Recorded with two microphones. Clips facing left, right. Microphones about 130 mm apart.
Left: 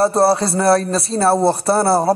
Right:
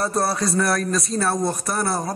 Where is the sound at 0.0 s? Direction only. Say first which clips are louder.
Left 8 dB; 30° left (ahead or behind).